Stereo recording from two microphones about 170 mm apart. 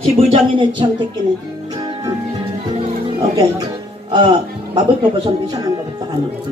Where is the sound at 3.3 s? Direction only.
25° right (ahead or behind).